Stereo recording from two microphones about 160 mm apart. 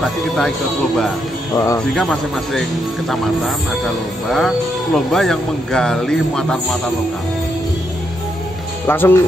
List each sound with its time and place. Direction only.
1.5 s speech: 20° left (ahead or behind)
2.0 s speech: centre (ahead or behind)
8.8 s speech: 15° left (ahead or behind)